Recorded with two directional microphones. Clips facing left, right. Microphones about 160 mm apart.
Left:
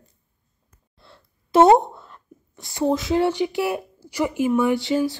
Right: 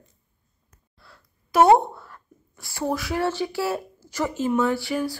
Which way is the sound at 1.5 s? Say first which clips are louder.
Left 2 dB; 25° left (ahead or behind).